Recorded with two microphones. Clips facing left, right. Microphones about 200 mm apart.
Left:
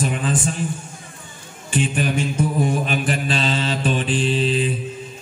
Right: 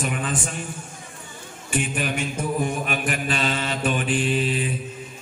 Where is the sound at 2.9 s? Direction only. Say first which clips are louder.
Left 3 dB; 30° left (ahead or behind).